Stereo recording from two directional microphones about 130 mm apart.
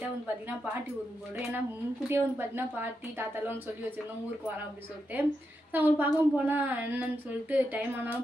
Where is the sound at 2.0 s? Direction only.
15° right (ahead or behind).